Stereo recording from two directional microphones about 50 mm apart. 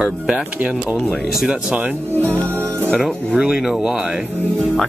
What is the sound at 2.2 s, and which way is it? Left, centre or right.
Speech, left.